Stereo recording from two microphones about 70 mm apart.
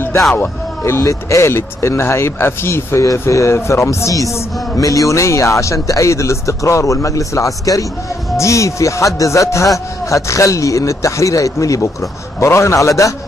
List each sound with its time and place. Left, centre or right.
0.4 s speech: left